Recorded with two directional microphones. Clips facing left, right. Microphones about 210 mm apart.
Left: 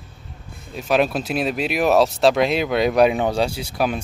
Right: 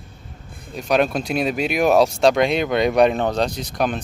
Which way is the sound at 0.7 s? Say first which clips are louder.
Even; centre (ahead or behind).